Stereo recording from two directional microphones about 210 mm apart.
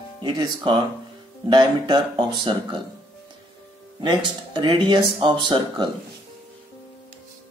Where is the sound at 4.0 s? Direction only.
20° right (ahead or behind).